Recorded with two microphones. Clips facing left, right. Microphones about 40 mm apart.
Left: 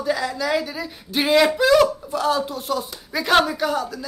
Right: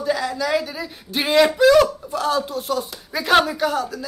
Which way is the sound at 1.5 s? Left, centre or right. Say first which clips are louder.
Right 2 dB; centre.